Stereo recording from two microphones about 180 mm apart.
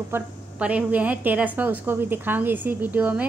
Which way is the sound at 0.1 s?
5° right (ahead or behind).